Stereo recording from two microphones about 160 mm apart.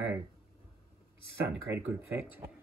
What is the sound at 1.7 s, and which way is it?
Speech, 15° right (ahead or behind).